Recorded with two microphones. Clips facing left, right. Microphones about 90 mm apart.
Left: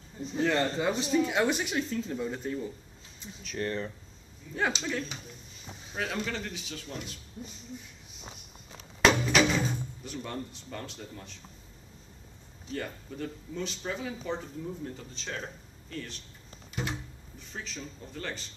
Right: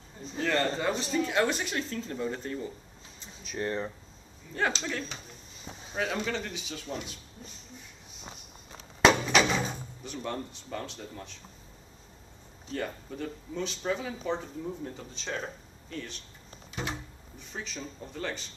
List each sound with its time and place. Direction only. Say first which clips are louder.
0.3 s speech: left 1 dB; 15° left (ahead or behind)
3.4 s speech: right 1 dB; 20° right (ahead or behind)
4.6 s speech: even; 5° left (ahead or behind)
5.9 s speech: right 2 dB; centre (ahead or behind)
9.0 s drawer open or close: right 1 dB; centre (ahead or behind)
12.7 s speech: right 2 dB; centre (ahead or behind)
16.8 s a sound: even; 5° left (ahead or behind)
17.5 s speech: right 2 dB; 5° right (ahead or behind)